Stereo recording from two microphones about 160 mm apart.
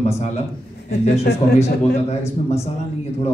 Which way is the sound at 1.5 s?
40° left (ahead or behind).